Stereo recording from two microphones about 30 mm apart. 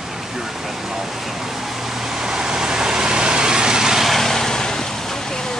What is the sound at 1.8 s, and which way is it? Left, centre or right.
Vehicle, centre.